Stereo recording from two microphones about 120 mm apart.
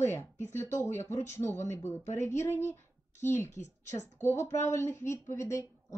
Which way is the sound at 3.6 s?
75° left (ahead or behind).